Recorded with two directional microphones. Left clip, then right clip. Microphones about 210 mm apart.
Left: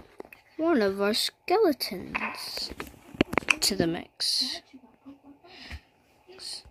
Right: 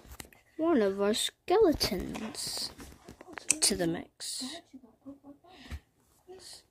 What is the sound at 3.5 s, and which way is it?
Speech, centre (ahead or behind).